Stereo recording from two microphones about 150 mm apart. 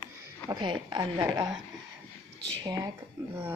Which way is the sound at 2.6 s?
25° right (ahead or behind).